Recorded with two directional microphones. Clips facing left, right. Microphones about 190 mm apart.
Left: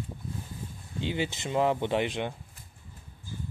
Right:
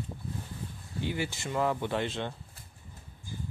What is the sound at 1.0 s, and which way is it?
Speech, 20° left (ahead or behind).